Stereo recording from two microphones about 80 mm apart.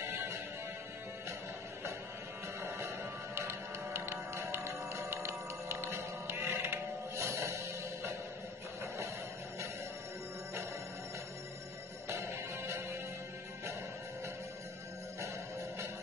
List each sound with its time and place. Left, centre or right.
0.0 s music: right
3.3 s music: right
12.1 s music: right